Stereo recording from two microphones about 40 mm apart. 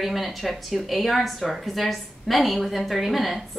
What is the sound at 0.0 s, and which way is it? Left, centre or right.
A woman's voice, centre.